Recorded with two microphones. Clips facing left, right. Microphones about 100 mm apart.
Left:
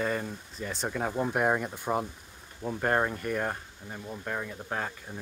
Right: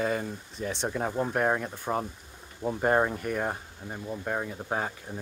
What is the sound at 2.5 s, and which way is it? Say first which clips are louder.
Speech: right 3 dB; 10° right (ahead or behind).